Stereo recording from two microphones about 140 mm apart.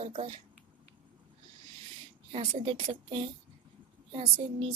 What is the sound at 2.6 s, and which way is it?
Speech, 35° right (ahead or behind).